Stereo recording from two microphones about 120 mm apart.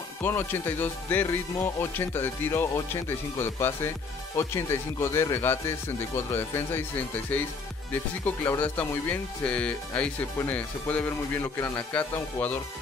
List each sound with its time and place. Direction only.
0.2 s speech: 20° left (ahead or behind)
8.5 s speech: 15° left (ahead or behind)
11.4 s speech: 25° left (ahead or behind)
11.7 s speech: 10° left (ahead or behind)